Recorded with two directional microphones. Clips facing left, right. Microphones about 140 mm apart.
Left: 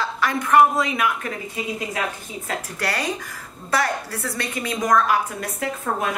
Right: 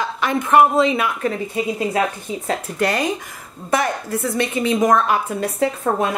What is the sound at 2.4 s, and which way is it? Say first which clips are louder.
Speech: right 6 dB; 20° right (ahead or behind).